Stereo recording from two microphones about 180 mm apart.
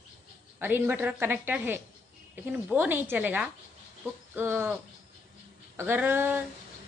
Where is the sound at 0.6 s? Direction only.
10° right (ahead or behind).